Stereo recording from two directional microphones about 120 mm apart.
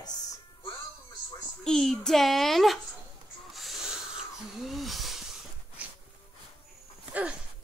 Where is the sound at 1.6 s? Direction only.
5° left (ahead or behind).